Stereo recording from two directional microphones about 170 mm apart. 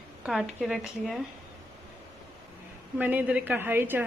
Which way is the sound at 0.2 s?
5° right (ahead or behind).